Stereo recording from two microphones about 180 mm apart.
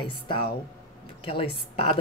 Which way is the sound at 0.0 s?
30° left (ahead or behind).